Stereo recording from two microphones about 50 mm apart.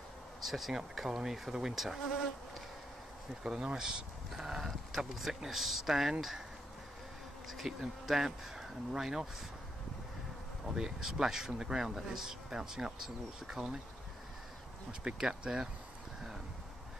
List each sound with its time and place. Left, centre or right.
0.4 s speech: centre
3.4 s speech: centre
7.4 s speech: centre
10.7 s speech: centre
14.9 s speech: centre